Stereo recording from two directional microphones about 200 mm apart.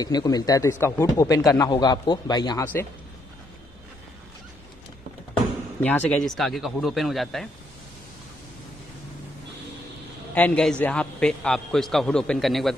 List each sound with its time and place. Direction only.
0.0 s a man's voice: 20° left (ahead or behind)
5.8 s a man's voice: 5° left (ahead or behind)
10.3 s a man's voice: 5° left (ahead or behind)